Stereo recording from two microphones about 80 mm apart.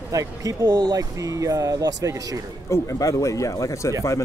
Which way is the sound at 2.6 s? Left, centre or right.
Left.